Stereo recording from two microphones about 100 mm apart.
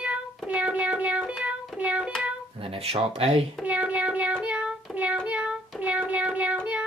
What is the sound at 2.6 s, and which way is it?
Speech, 75° right (ahead or behind).